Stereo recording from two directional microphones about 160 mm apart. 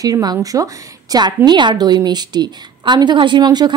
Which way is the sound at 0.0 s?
25° right (ahead or behind).